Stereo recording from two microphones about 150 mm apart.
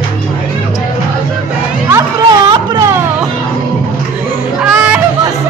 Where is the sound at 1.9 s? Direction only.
25° right (ahead or behind).